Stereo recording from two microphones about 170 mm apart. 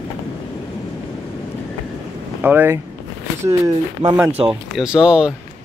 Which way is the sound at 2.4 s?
10° right (ahead or behind).